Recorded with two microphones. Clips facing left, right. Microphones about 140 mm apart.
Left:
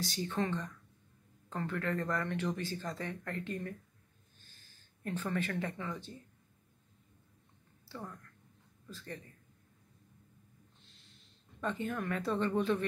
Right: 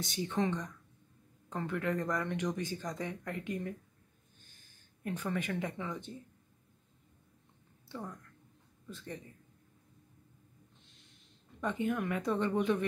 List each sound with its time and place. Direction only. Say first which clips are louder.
0.0 s speech: right 2 dB; 20° right (ahead or behind)
8.8 s a man's voice: right 2 dB; 15° right (ahead or behind)
11.6 s speech: right 3 dB; 15° right (ahead or behind)